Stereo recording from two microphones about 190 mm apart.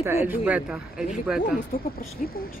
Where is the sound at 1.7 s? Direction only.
50° left (ahead or behind).